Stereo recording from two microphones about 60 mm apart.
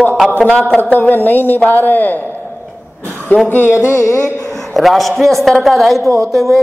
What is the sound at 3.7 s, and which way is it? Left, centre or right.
Carnatic music, left.